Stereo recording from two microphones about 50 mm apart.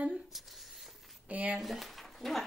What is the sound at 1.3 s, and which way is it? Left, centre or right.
Speech, right.